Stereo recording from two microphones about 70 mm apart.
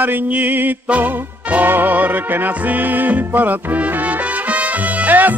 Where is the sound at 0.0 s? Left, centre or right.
Right.